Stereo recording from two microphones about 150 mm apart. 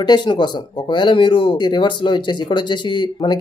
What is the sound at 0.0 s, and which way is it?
Speech, 30° left (ahead or behind).